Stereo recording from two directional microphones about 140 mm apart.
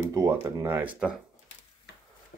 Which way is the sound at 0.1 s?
20° right (ahead or behind).